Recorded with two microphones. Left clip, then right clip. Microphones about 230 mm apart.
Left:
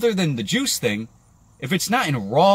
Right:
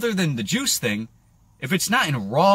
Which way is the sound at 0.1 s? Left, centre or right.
Centre.